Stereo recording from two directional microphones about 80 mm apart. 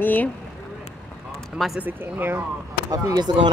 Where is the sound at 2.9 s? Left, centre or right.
Right.